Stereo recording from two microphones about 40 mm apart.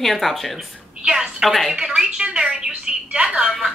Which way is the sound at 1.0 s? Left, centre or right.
Right.